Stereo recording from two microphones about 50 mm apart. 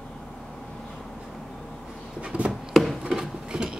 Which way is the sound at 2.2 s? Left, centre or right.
Right.